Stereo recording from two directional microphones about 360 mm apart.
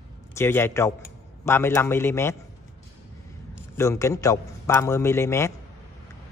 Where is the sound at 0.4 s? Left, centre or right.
Centre.